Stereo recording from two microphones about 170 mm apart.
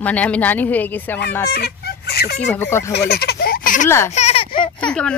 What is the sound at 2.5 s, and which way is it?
Speech, 15° left (ahead or behind).